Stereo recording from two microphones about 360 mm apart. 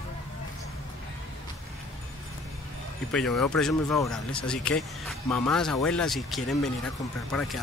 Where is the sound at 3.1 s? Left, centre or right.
Centre.